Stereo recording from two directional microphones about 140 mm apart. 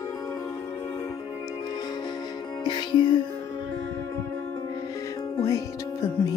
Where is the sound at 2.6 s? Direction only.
30° left (ahead or behind).